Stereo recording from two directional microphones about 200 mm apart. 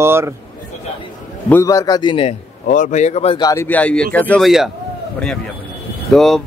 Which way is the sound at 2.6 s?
40° left (ahead or behind).